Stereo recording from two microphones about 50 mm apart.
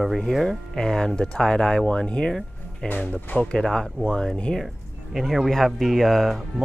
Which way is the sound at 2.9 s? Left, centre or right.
Left.